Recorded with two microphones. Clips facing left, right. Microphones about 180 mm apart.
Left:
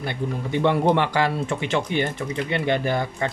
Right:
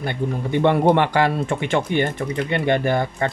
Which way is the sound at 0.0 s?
55° right (ahead or behind).